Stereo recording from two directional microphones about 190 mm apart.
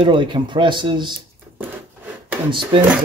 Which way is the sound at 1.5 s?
10° right (ahead or behind).